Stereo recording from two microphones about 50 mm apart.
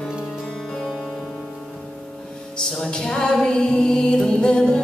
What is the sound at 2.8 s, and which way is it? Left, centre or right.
Music, centre.